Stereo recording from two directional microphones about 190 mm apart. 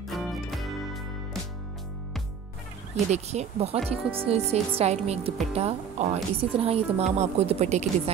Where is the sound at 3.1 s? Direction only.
35° right (ahead or behind).